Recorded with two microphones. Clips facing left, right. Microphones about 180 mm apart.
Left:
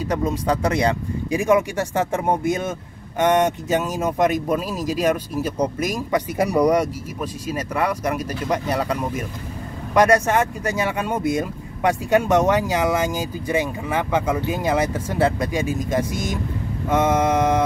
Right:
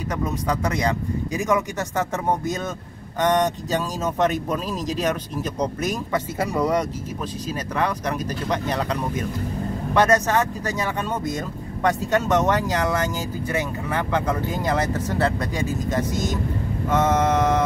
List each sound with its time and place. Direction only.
0.1 s speech: 30° left (ahead or behind)
1.3 s speech: 15° left (ahead or behind)